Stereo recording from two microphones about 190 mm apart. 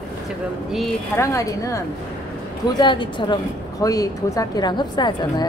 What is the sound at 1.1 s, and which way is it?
A woman's voice, 15° left (ahead or behind).